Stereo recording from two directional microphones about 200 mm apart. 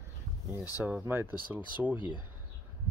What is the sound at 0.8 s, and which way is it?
Speech, 5° right (ahead or behind).